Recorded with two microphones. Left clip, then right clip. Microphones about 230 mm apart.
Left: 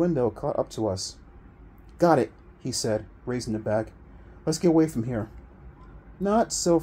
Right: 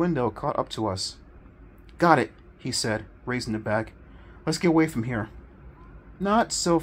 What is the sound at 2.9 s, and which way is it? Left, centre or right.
Speech, right.